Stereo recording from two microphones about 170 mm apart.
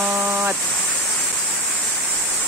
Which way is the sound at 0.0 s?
10° right (ahead or behind).